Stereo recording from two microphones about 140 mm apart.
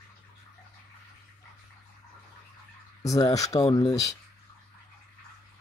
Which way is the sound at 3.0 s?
25° left (ahead or behind).